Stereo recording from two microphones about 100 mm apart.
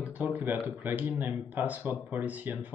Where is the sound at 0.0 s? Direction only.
15° right (ahead or behind).